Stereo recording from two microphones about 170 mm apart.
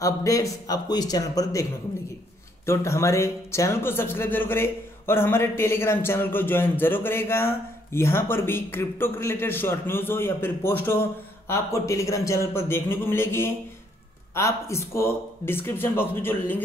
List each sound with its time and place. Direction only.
0.0 s speech: 20° left (ahead or behind)